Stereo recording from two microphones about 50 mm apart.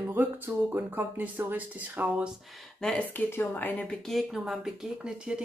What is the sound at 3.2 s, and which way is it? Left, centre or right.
Speech, left.